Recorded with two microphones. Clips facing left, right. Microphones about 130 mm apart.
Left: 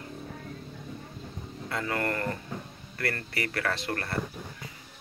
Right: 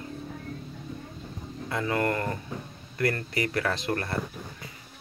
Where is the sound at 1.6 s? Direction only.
20° right (ahead or behind).